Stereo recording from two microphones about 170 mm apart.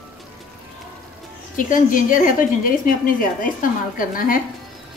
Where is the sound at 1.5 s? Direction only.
55° left (ahead or behind).